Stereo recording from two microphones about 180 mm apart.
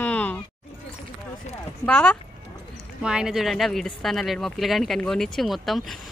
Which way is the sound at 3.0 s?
5° right (ahead or behind).